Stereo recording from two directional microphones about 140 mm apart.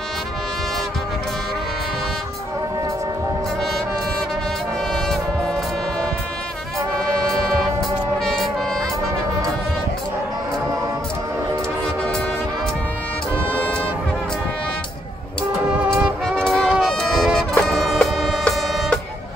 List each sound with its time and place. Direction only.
4.9 s music: centre (ahead or behind)
8.2 s music: 5° left (ahead or behind)
16.0 s music: 5° left (ahead or behind)